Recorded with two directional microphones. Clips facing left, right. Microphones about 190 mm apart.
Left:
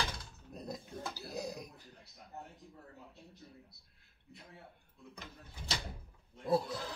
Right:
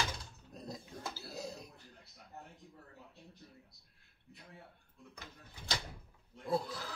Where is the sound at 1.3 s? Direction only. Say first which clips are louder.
Left 6 dB; 15° left (ahead or behind).